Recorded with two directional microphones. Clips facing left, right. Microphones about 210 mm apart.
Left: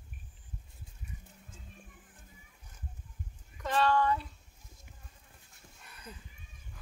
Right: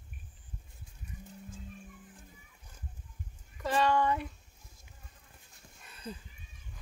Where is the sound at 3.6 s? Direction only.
15° right (ahead or behind).